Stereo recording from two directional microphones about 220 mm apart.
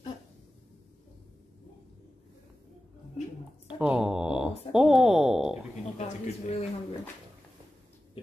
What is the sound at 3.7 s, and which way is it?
Mantra, 5° right (ahead or behind).